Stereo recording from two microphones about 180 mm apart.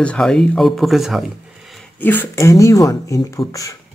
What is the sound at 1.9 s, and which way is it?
Speech, 10° left (ahead or behind).